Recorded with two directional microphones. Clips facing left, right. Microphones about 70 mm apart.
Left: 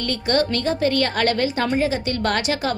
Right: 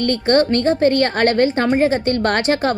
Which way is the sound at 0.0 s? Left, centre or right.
Right.